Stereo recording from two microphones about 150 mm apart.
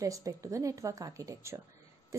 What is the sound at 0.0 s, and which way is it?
A woman's voice, 20° right (ahead or behind).